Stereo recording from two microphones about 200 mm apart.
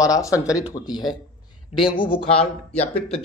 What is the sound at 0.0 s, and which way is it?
Speech, 15° left (ahead or behind).